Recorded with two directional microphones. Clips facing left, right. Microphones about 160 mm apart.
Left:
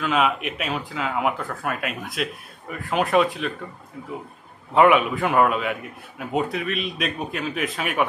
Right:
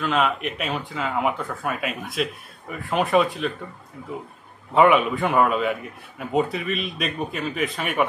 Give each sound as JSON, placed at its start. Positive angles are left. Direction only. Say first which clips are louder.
{"t": 0.0, "sound": "a man's voice", "louder": "even", "side_deg": 0}
{"t": 4.7, "sound": "a man's voice", "louder": "even", "side_deg": 0}